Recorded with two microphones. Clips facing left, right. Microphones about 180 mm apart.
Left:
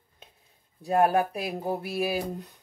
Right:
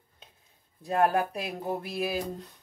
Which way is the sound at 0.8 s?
10° left (ahead or behind).